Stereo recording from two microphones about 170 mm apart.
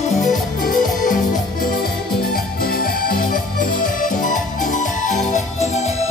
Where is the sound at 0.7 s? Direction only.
50° left (ahead or behind).